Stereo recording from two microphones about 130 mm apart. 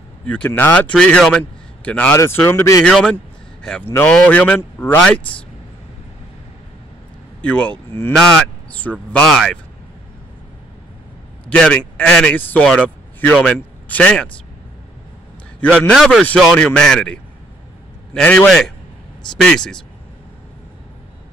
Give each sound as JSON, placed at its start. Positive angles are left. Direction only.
{"t": 0.3, "sound": "a man's voice", "side_deg": 15}
{"t": 2.8, "sound": "a man's voice", "side_deg": 5}
{"t": 7.4, "sound": "a man's voice", "side_deg": 10}
{"t": 9.1, "sound": "speech", "side_deg": 5}
{"t": 11.4, "sound": "a man's voice", "side_deg": 10}
{"t": 15.9, "sound": "a man's voice", "side_deg": 0}